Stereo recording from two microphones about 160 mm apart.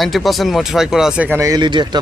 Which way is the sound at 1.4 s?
25° right (ahead or behind).